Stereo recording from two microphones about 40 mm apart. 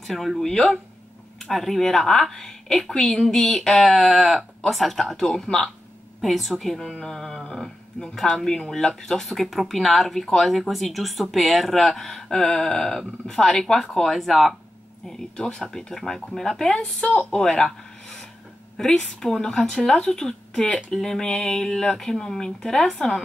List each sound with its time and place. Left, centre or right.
0.0 s speech: centre
5.1 s speech: centre
6.2 s speech: centre
13.9 s speech: centre
15.0 s speech: centre
16.8 s speech: left
17.3 s speech: centre
19.1 s speech: centre